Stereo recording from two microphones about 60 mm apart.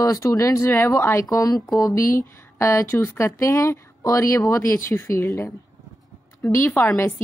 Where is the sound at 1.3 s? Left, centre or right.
Left.